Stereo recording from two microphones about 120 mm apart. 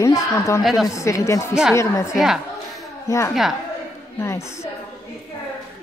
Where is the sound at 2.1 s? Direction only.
5° right (ahead or behind).